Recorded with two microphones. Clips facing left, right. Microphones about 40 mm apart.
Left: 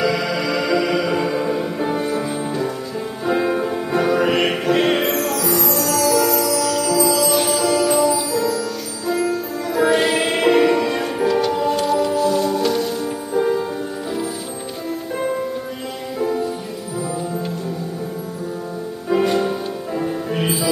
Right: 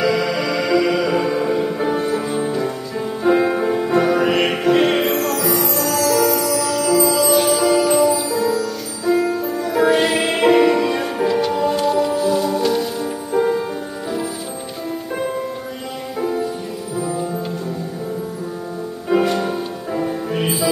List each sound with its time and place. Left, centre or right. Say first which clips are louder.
0.0 s music: right 2 dB; centre
5.1 s music: right 1 dB; right
5.4 s music: right 1 dB; centre
6.8 s music: right 4 dB; right
7.1 s music: right 2 dB; centre
9.8 s music: right 1 dB; centre
16.2 s music: even; centre
19.2 s music: left 1 dB; centre